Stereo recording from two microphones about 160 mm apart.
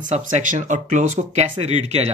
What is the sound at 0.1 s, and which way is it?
Speech, 50° right (ahead or behind).